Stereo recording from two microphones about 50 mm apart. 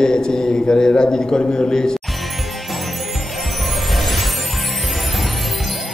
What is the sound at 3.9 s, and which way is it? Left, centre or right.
Music, centre.